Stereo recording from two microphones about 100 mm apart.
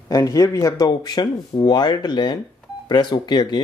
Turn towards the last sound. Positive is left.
turn(degrees=45)  # may be behind; listen again after turning